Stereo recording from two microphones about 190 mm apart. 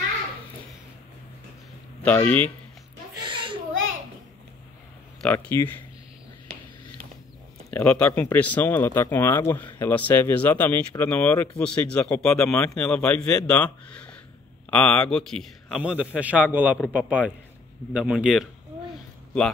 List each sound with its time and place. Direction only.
2.0 s speech: 10° left (ahead or behind)
3.2 s a sound: 25° right (ahead or behind)
5.2 s speech: 10° left (ahead or behind)
7.7 s a man's voice: 5° left (ahead or behind)